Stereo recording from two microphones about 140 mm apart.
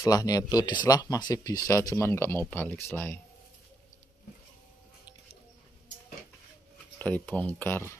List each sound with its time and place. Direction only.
0.0 s speech: 25° left (ahead or behind)
7.0 s speech: 10° left (ahead or behind)